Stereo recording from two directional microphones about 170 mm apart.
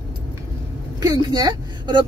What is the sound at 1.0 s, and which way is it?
Speech, 25° right (ahead or behind).